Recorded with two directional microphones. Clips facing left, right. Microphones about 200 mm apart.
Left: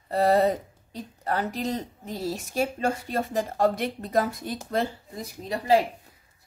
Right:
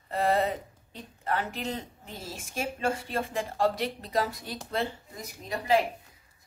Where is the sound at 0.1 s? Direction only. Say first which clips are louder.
Left 5 dB; 35° left (ahead or behind).